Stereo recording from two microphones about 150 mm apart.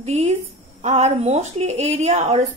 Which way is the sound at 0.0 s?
45° right (ahead or behind).